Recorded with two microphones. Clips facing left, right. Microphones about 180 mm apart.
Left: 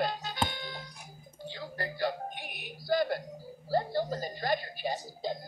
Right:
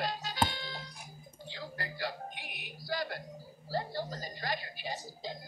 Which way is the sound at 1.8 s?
50° left (ahead or behind).